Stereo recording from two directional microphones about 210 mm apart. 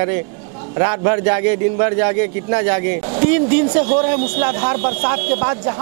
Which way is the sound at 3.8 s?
40° right (ahead or behind).